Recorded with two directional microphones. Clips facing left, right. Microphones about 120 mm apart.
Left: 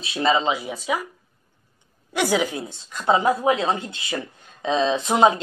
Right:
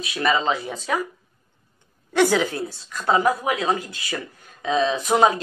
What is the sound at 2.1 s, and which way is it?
Speech, 15° left (ahead or behind).